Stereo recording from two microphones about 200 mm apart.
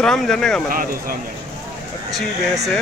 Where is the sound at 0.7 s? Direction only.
45° right (ahead or behind).